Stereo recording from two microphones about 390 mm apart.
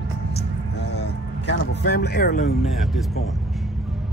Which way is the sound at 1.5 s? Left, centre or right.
Left.